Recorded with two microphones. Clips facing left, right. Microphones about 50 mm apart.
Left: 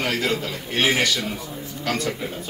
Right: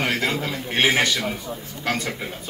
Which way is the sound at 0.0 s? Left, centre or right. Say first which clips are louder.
Even; right.